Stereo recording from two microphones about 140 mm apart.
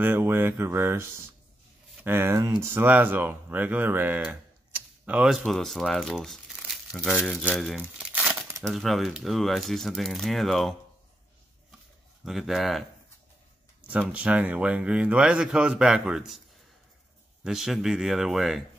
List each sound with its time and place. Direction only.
0.0 s a man's voice: 15° right (ahead or behind); by 8.1 s centre (ahead or behind)
8.1 s crumpling: 15° right (ahead or behind)
8.6 s speech: centre (ahead or behind)
12.3 s speech: centre (ahead or behind)
14.1 s a man's voice: 10° right (ahead or behind)
17.4 s speech: 5° right (ahead or behind)